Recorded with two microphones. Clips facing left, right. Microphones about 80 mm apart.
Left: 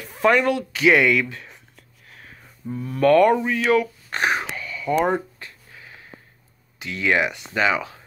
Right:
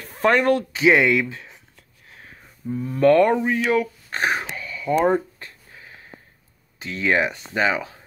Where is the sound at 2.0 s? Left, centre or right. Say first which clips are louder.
Even; right.